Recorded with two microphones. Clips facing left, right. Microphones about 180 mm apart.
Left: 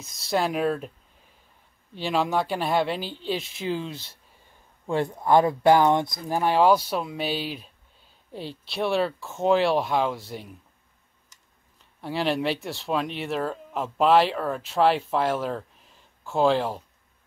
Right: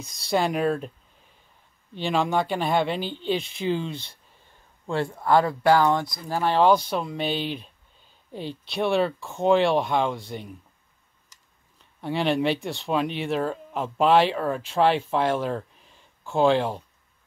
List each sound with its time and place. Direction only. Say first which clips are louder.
0.0 s speech: right 1 dB; centre (ahead or behind)
2.0 s speech: right 1 dB; 5° left (ahead or behind)
4.8 s speech: left 1 dB; 15° left (ahead or behind)
12.0 s speech: right 2 dB; centre (ahead or behind)